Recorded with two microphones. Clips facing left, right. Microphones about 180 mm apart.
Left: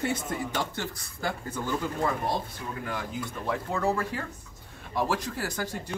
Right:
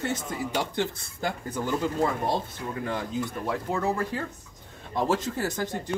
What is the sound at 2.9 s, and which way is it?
Speech, 25° right (ahead or behind).